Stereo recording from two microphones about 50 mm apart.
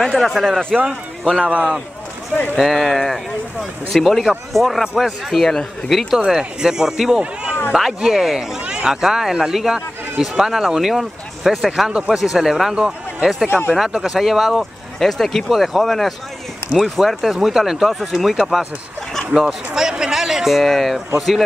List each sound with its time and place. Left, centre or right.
0.0 s speech: centre
0.7 s speech: centre
1.4 s a man's voice: right
2.5 s speech: centre
6.1 s speech: centre
13.5 s speech: left
14.0 s speech: centre
19.3 s speech: centre